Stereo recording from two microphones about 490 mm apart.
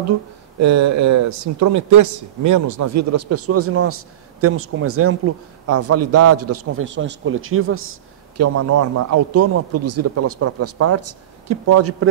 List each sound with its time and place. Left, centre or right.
0.6 s a man's voice: right